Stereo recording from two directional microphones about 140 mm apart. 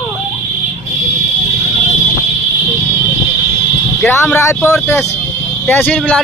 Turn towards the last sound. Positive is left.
turn(degrees=10)  # may be behind; listen again after turning